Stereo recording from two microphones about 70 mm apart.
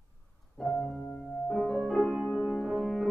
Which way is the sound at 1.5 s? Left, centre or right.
Centre.